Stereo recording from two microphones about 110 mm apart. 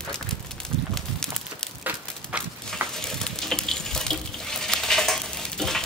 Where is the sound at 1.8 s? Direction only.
15° right (ahead or behind).